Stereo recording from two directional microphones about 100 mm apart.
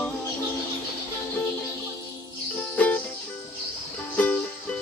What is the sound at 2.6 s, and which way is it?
Music, 15° left (ahead or behind).